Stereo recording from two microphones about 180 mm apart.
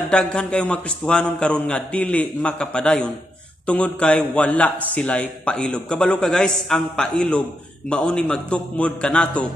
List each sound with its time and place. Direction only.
0.1 s a man's voice: 5° left (ahead or behind)